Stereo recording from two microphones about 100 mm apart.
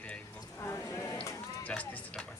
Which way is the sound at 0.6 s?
30° left (ahead or behind).